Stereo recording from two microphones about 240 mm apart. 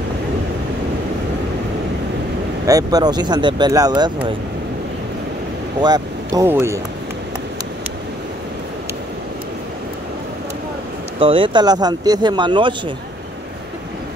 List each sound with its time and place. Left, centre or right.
2.6 s speech: centre
5.8 s speech: centre
11.1 s speech: right